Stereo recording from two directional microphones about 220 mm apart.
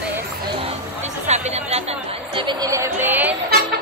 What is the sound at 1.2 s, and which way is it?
Chatter, 30° right (ahead or behind).